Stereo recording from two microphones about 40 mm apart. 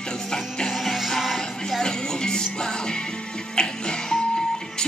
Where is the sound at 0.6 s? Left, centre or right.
Centre.